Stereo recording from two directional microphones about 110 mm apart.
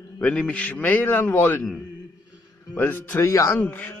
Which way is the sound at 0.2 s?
10° left (ahead or behind).